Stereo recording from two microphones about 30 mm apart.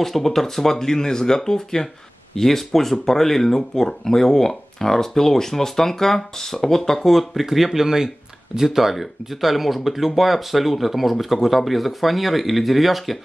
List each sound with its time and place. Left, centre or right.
0.0 s speech: centre
7.2 s speech: centre